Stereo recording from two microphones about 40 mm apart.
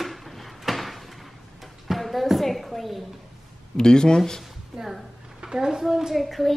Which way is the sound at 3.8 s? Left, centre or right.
Centre.